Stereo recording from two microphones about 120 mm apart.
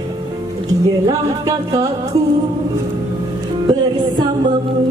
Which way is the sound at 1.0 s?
30° right (ahead or behind).